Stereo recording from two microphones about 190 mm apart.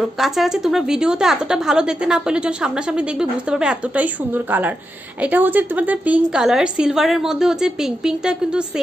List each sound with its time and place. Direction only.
0.0 s a woman's voice: centre (ahead or behind)